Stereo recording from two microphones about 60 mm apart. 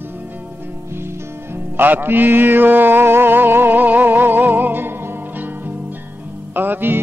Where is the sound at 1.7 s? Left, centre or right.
Right.